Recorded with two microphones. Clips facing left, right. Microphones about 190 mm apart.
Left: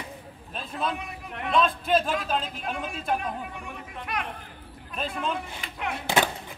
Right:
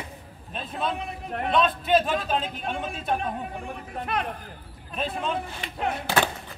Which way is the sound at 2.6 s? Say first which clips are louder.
Right 2 dB; 30° right (ahead or behind).